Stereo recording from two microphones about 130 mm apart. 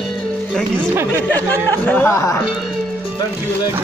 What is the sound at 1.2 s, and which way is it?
Speech, 15° left (ahead or behind).